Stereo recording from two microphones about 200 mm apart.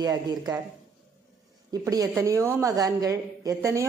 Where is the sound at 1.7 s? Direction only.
15° right (ahead or behind).